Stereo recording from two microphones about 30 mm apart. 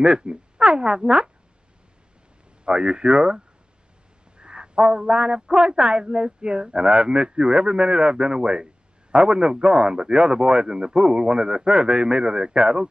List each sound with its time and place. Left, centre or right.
0.0 s speech: right
2.6 s a man's voice: right